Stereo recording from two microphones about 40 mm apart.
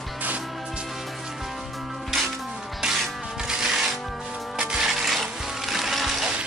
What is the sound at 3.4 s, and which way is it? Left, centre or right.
Music, centre.